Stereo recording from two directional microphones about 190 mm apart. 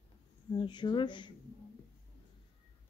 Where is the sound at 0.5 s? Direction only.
25° left (ahead or behind).